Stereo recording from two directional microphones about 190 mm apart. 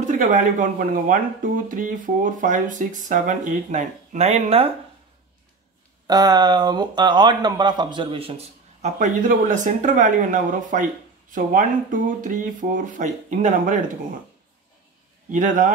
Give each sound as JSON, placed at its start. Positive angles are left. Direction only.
{"t": 0.0, "sound": "speech", "side_deg": -40}
{"t": 6.0, "sound": "speech", "side_deg": -20}
{"t": 15.3, "sound": "speech", "side_deg": -40}